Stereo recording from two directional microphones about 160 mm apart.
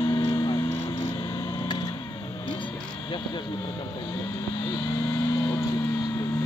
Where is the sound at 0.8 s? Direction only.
30° left (ahead or behind).